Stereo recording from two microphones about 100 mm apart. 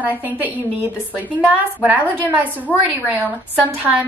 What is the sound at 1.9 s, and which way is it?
Speech, 15° right (ahead or behind).